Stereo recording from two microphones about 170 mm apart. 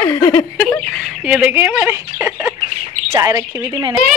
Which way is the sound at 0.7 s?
10° left (ahead or behind).